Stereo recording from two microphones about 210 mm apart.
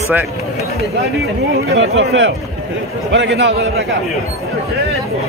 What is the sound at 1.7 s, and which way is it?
A man's voice, 65° right (ahead or behind).